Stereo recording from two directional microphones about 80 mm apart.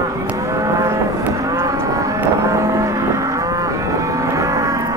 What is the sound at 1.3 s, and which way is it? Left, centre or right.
Cattle, right.